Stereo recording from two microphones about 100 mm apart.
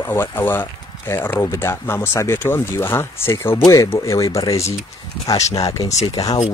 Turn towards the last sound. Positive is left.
turn(degrees=45)  # may be behind; listen again after turning